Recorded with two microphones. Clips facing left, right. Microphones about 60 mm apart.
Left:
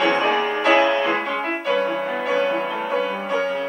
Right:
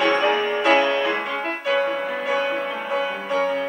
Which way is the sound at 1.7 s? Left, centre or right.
Centre.